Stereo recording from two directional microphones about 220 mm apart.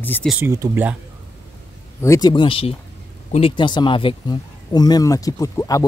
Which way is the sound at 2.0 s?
15° left (ahead or behind).